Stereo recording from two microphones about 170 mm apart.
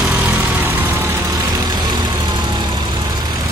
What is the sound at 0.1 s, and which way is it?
Vehicle, 10° right (ahead or behind).